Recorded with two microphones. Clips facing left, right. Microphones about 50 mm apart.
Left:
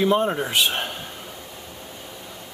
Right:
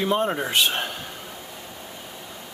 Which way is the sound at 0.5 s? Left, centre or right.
Centre.